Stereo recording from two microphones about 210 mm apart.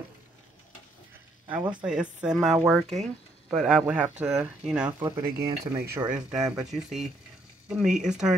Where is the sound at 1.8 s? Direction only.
5° right (ahead or behind).